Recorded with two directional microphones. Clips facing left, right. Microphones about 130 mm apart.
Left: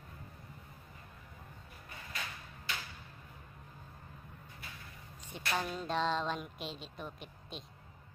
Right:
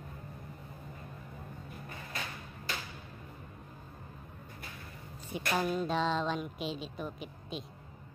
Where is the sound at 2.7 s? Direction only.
40° right (ahead or behind).